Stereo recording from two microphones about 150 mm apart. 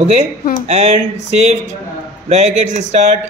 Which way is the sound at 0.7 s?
45° right (ahead or behind).